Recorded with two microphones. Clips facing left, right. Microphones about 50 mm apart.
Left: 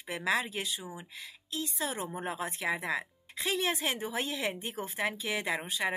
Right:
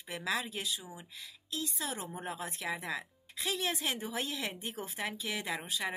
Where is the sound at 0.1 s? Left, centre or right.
Centre.